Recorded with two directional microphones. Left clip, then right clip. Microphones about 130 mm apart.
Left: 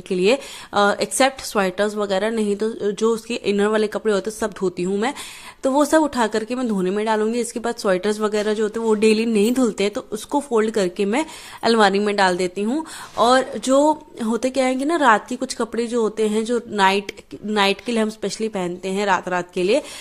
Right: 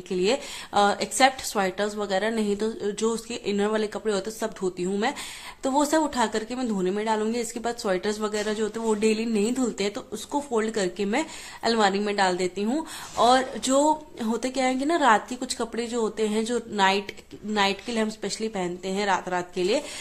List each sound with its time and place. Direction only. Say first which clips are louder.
0.1 s speech: left 6 dB; 40° left (ahead or behind)
7.2 s speech: left 6 dB; 35° left (ahead or behind)
9.0 s speech: left 8 dB; 45° left (ahead or behind); by 16.6 s 30° left (ahead or behind)
16.7 s speech: left 5 dB; 40° left (ahead or behind)